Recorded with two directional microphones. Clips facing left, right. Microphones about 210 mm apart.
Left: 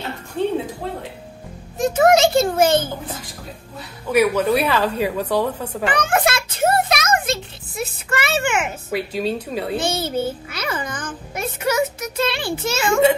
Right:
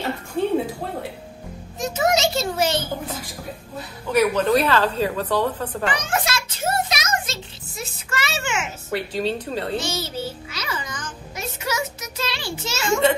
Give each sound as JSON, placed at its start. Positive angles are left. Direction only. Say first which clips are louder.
{"t": 0.4, "sound": "music", "louder": "left 1 dB", "side_deg": -10}
{"t": 1.8, "sound": "a sound", "louder": "left 6 dB", "side_deg": 55}
{"t": 4.1, "sound": "a woman's voice", "louder": "left 1 dB", "side_deg": 10}
{"t": 5.9, "sound": "a sound", "louder": "left 7 dB", "side_deg": 55}
{"t": 8.9, "sound": "a woman's voice", "louder": "left 1 dB", "side_deg": 10}
{"t": 9.8, "sound": "music", "louder": "left 5 dB", "side_deg": 55}